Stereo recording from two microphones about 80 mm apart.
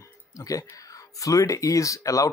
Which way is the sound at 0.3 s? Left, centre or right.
Left.